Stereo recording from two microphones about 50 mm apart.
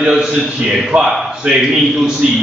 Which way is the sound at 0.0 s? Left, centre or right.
Centre.